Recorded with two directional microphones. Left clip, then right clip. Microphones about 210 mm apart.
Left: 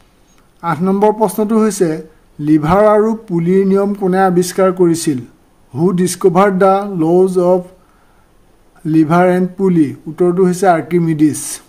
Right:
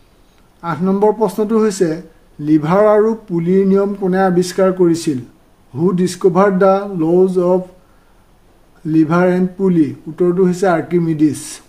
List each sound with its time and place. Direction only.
0.6 s speech: 20° left (ahead or behind)
8.8 s speech: 20° left (ahead or behind)